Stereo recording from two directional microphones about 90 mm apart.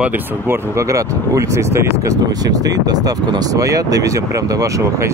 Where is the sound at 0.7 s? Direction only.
35° right (ahead or behind).